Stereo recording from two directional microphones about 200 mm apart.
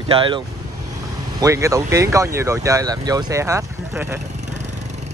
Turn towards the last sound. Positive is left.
turn(degrees=-15)  # may be behind; listen again after turning